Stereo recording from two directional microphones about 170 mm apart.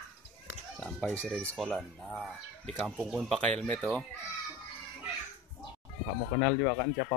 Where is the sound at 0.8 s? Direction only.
10° left (ahead or behind).